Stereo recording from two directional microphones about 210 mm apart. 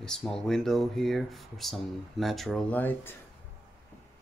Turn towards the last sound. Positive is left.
turn(degrees=10)  # may be behind; listen again after turning